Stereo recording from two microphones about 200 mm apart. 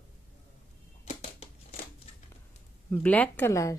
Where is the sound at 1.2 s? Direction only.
30° left (ahead or behind).